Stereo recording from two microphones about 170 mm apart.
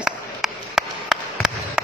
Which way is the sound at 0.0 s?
Centre (ahead or behind).